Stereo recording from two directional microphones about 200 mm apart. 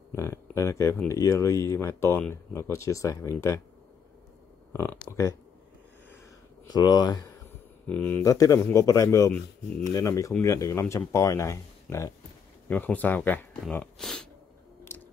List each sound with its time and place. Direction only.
0.1 s speech: 15° left (ahead or behind)
4.9 s speech: 15° left (ahead or behind)
6.7 s speech: 20° left (ahead or behind)
7.8 s speech: 10° left (ahead or behind)